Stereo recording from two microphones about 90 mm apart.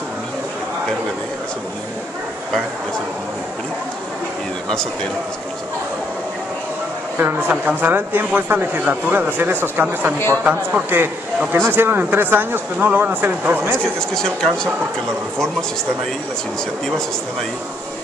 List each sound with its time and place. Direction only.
7.2 s speech: 20° right (ahead or behind)
10.1 s a man's voice: 25° left (ahead or behind)
10.4 s speech: 20° right (ahead or behind)
13.8 s speech: 5° left (ahead or behind)
16.8 s a man's voice: 5° left (ahead or behind)